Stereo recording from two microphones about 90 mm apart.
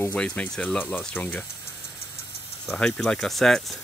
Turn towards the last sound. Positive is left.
turn(degrees=5)  # may be behind; listen again after turning